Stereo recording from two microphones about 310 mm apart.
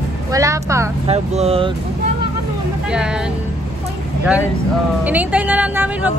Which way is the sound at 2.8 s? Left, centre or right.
Centre.